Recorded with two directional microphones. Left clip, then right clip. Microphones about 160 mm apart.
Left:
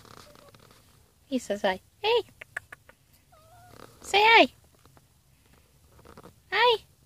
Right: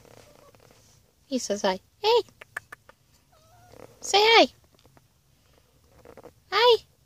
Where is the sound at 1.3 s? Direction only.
40° right (ahead or behind).